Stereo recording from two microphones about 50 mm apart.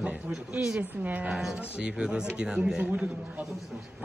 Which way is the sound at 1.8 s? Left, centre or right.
Centre.